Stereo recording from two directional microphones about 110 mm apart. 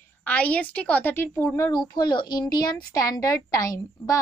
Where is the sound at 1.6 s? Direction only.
40° left (ahead or behind).